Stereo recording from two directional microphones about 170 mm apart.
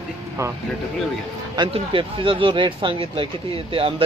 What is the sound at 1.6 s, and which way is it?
Speech, 30° right (ahead or behind).